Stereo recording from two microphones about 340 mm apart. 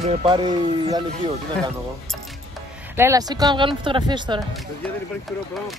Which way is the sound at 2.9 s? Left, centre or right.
Centre.